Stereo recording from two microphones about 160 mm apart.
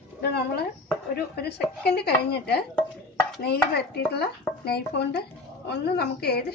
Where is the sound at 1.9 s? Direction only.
90° left.